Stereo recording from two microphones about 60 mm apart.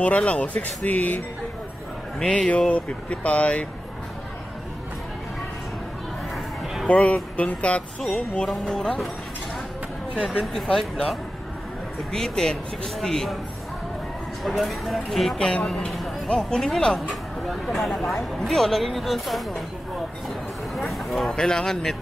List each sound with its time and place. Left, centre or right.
0.0 s speech: left
2.1 s speech: centre
6.3 s a sound: centre
6.9 s speech: left
8.5 s speech: centre
10.1 s speech: centre
10.4 s speech: centre
14.4 s speech: centre
15.3 s speech: centre
15.6 s speech: centre
20.2 s a sound: centre
21.4 s speech: centre